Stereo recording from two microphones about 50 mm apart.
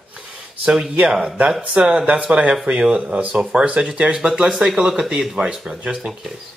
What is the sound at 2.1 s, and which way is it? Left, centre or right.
Speech, right.